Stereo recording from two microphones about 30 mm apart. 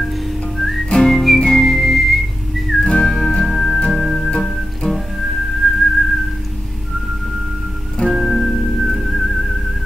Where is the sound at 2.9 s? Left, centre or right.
Left.